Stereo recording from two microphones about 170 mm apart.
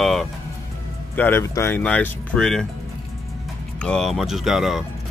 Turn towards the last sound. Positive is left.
turn(degrees=0)  # may be behind; listen again after turning